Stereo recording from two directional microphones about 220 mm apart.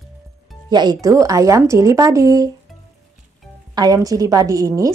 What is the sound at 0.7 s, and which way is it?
Speech, 20° right (ahead or behind).